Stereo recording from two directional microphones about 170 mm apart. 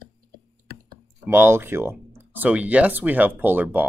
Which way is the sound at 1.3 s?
15° right (ahead or behind).